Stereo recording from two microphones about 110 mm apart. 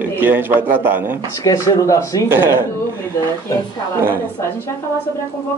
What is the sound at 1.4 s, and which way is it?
Speech, 30° left (ahead or behind).